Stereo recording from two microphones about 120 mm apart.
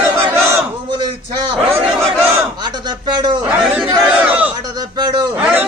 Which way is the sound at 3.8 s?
5° right (ahead or behind).